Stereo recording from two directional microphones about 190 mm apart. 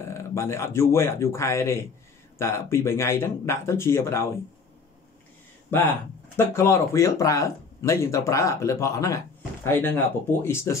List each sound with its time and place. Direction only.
0.1 s speech: 15° left (ahead or behind)
5.7 s speech: 10° left (ahead or behind)